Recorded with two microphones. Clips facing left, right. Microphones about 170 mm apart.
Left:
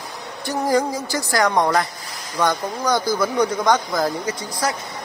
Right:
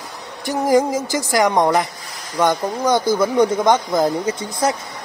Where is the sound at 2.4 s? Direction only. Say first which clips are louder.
Right 3 dB; 20° right (ahead or behind).